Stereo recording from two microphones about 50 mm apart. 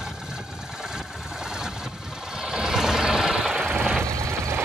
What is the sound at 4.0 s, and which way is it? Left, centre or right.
Vehicle, right.